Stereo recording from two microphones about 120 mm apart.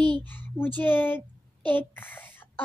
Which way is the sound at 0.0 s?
40° right (ahead or behind).